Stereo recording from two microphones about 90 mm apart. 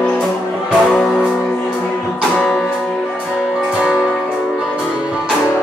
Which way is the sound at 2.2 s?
10° left (ahead or behind).